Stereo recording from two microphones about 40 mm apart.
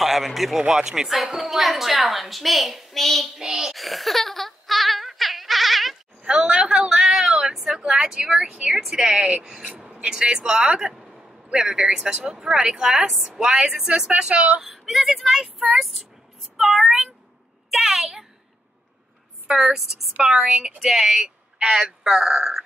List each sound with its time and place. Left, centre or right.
0.0 s speech: centre
0.7 s speech: centre
3.3 s speech: centre
3.7 s a sound: centre
6.2 s a sound: right
7.2 s vehicle: centre
7.6 s a woman's voice: centre
9.7 s a sound: centre
10.0 s speech: centre
13.4 s a woman's voice: right
14.6 s speech: centre
16.5 s meow: centre
17.6 s a sound: centre
19.5 s speech: centre